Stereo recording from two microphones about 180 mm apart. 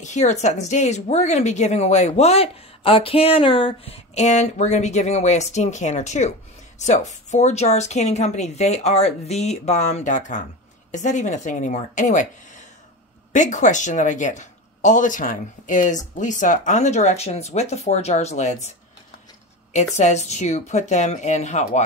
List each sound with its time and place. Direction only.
0.0 s a woman's voice: 40° left (ahead or behind)
19.7 s a woman's voice: 40° left (ahead or behind)